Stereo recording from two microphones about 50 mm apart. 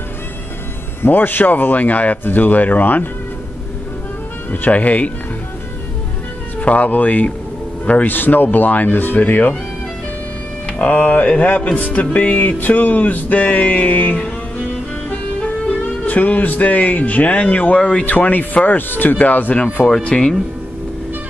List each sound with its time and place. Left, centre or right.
1.0 s music: left
4.5 s music: left
6.6 s music: left
7.8 s speech: left
8.1 s music: left
10.7 s music: left
15.4 s speech: left
18.0 s music: left
19.5 s speech: left